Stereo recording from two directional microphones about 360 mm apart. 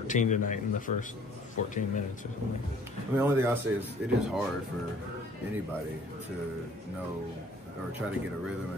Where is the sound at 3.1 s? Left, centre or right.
Centre.